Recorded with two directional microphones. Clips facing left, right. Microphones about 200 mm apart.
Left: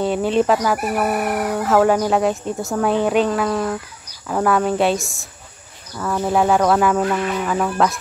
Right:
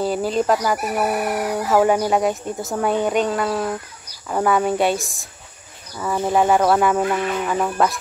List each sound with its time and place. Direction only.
0.0 s speech: 5° right (ahead or behind)